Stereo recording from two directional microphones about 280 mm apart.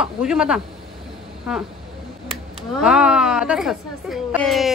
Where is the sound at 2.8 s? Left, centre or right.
Centre.